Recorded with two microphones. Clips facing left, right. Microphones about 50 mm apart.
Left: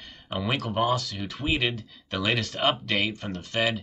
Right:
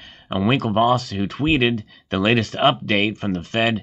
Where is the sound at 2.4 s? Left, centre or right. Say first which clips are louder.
Right 8 dB; right.